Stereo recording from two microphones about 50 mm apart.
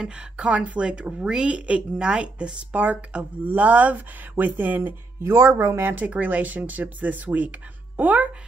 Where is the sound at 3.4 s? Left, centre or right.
Right.